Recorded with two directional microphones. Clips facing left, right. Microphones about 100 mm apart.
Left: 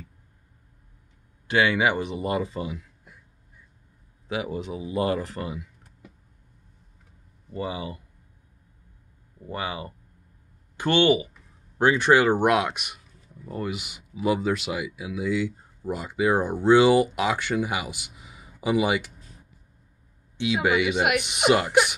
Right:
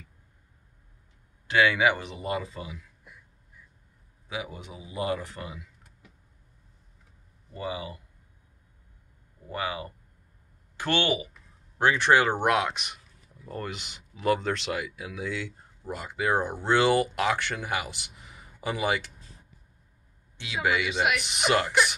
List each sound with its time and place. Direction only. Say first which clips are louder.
1.5 s speech: left 1 dB; 20° left (ahead or behind)
2.3 s speech: left 4 dB; 25° left (ahead or behind)
4.5 s speech: left 11 dB; 80° left
5.0 s speech: left 2 dB; 40° left (ahead or behind)
7.5 s speech: left 3 dB; 25° left (ahead or behind)
9.5 s speech: left 1 dB; 20° left (ahead or behind)
20.3 s speech: left 5 dB; 20° left (ahead or behind)